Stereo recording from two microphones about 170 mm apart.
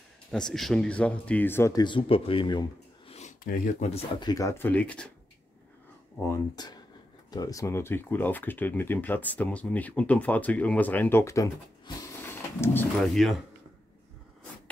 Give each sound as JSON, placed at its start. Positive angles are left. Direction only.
{"t": 0.3, "sound": "speech", "side_deg": 5}
{"t": 3.1, "sound": "a sound", "side_deg": 40}
{"t": 3.4, "sound": "speech", "side_deg": 55}
{"t": 4.2, "sound": "speech", "side_deg": 20}
{"t": 6.2, "sound": "speech", "side_deg": 20}
{"t": 13.0, "sound": "speech", "side_deg": 0}